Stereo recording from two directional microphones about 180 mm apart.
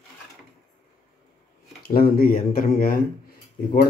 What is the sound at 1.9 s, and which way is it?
Speech, 55° left (ahead or behind).